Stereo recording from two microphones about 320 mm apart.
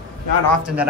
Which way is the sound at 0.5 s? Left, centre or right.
Centre.